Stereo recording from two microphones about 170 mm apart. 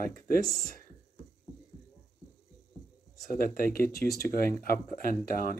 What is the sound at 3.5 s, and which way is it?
Speech, 60° left (ahead or behind).